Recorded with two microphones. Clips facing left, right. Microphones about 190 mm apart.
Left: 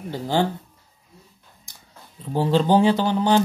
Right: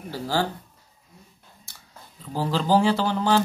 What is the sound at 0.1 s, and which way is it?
Speech, 20° left (ahead or behind).